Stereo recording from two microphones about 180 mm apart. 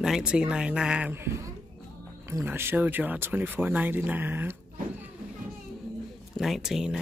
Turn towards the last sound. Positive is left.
turn(degrees=-5)  # may be behind; listen again after turning